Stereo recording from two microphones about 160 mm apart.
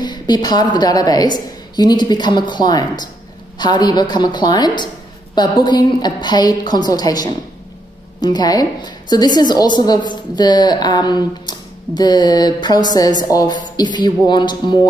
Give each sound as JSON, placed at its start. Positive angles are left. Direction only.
{"t": 0.0, "sound": "a woman's voice", "side_deg": 25}